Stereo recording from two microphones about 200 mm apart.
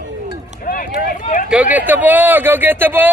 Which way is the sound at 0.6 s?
40° left (ahead or behind).